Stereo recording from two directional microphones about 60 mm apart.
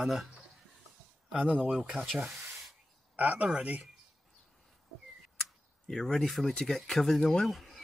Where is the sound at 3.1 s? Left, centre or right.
Right.